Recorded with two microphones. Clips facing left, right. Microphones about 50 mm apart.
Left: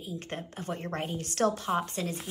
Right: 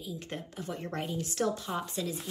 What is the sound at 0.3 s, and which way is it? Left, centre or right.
Speech, left.